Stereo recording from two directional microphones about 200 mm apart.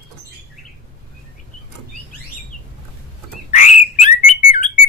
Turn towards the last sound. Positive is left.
turn(degrees=35)  # may be behind; listen again after turning